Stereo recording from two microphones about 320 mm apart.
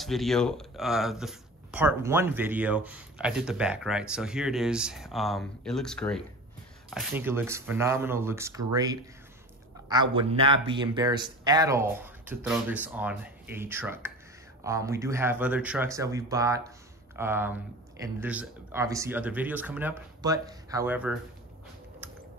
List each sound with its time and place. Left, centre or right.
0.0 s speech: centre